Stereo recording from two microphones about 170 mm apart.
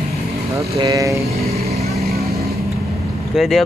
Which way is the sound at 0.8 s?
20° right (ahead or behind).